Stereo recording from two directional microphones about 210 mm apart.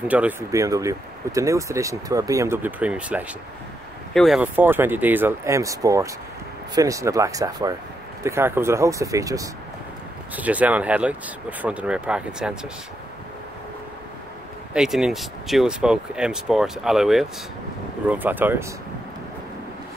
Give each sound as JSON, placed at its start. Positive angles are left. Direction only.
{"t": 0.1, "sound": "speech", "side_deg": -10}
{"t": 14.7, "sound": "speech", "side_deg": -5}